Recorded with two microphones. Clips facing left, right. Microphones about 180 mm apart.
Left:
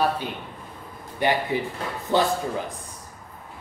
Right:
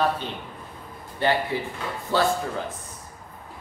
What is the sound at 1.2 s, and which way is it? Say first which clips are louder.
A man's voice: left 1 dB; 15° left (ahead or behind).